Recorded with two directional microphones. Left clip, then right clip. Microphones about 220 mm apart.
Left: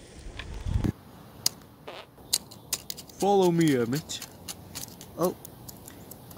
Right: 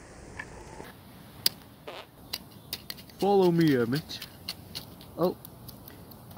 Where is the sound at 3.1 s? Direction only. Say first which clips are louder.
Left 1 dB; centre (ahead or behind).